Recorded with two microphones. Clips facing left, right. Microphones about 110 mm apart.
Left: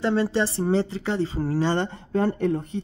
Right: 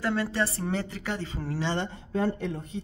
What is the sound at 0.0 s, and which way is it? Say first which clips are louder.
A man's voice: left 5 dB; 25° left (ahead or behind).